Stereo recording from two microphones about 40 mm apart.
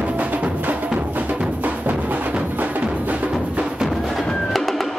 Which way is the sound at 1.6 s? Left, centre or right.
Right.